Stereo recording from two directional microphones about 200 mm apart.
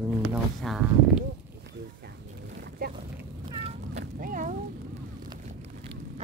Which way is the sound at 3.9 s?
45° right (ahead or behind).